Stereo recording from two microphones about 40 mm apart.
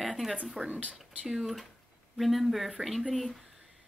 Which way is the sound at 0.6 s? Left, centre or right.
Right.